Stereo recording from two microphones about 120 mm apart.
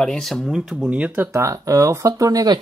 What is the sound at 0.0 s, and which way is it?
Speech, 5° left (ahead or behind).